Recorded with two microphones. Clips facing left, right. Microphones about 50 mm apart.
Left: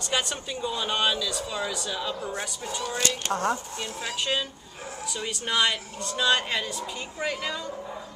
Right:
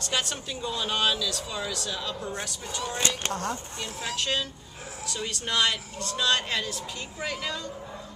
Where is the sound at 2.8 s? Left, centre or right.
Right.